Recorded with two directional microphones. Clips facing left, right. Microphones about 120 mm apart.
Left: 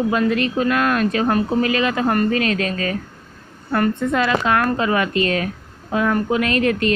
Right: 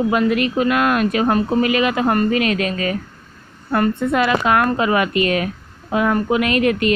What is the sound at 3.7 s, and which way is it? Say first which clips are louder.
A woman's voice: right 1 dB; 20° right (ahead or behind).